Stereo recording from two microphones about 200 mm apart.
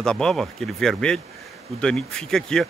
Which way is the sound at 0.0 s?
5° left (ahead or behind).